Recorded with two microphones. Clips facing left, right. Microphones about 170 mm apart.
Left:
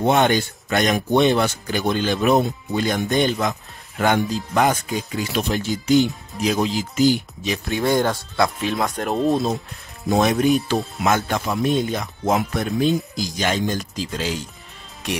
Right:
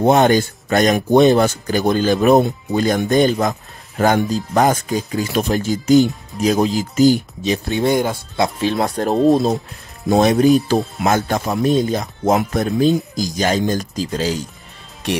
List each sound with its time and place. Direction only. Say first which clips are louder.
0.0 s speech: right 5 dB; 40° right (ahead or behind)
7.4 s speech: right 4 dB; 30° right (ahead or behind); by 8.5 s 15° right (ahead or behind)
8.5 s speech: right 5 dB; 35° right (ahead or behind)